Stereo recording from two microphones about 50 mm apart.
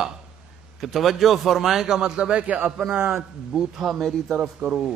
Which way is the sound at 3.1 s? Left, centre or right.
Centre.